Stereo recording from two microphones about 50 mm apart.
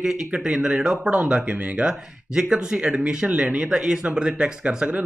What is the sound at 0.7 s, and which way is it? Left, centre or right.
Speech, centre.